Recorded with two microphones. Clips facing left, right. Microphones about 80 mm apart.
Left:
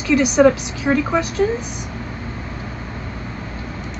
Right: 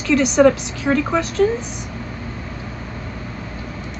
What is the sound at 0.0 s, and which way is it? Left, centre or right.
A woman's voice, centre.